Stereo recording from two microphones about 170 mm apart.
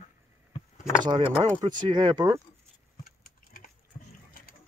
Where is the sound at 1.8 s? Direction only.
25° right (ahead or behind).